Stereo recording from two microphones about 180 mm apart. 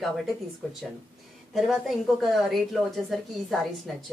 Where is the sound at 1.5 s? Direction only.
Centre (ahead or behind).